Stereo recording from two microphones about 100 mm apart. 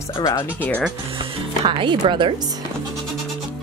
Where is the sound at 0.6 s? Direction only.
15° left (ahead or behind).